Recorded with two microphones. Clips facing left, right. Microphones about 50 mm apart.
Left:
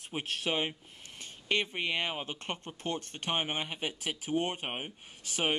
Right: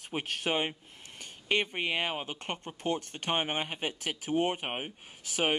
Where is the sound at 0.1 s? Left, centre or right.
Right.